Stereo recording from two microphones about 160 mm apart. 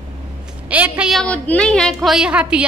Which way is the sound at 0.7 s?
10° right (ahead or behind).